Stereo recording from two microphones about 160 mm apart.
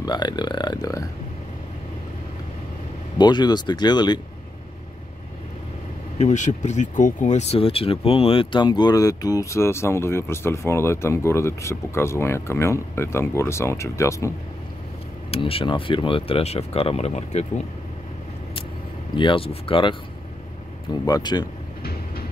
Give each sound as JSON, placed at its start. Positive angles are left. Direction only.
{"t": 0.0, "sound": "speech", "side_deg": 25}
{"t": 3.2, "sound": "speech", "side_deg": 25}
{"t": 6.1, "sound": "speech", "side_deg": 50}
{"t": 15.3, "sound": "speech", "side_deg": 35}
{"t": 19.1, "sound": "speech", "side_deg": 30}
{"t": 21.0, "sound": "speech", "side_deg": 25}